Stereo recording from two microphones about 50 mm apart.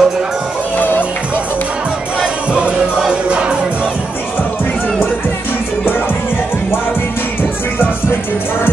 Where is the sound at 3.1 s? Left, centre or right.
Centre.